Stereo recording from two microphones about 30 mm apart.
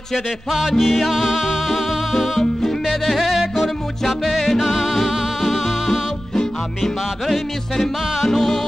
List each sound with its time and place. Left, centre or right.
0.1 s music: centre
2.9 s music: centre
4.6 s music: centre
8.3 s music: centre